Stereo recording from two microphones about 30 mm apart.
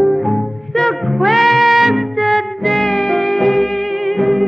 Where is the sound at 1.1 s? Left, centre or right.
Centre.